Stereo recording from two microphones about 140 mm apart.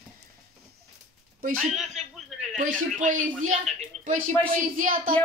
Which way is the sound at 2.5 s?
65° right (ahead or behind).